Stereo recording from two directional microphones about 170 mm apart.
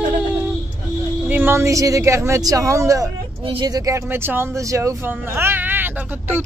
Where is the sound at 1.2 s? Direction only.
10° right (ahead or behind).